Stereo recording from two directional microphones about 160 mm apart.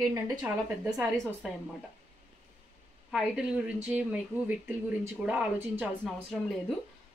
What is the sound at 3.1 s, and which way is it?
A woman's voice, 5° right (ahead or behind).